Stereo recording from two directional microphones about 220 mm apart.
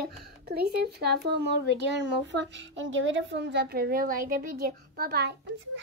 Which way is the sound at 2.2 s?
55° right (ahead or behind).